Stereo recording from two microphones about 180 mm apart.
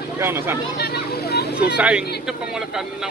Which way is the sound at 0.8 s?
60° left (ahead or behind).